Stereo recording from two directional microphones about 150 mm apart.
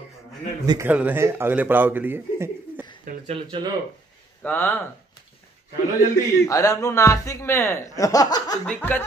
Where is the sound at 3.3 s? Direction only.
35° right (ahead or behind).